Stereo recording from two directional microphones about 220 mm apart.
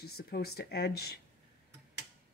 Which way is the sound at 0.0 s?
45° left (ahead or behind).